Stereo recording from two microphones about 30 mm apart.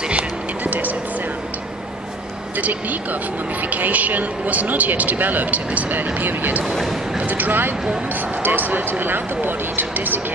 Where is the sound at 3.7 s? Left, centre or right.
Right.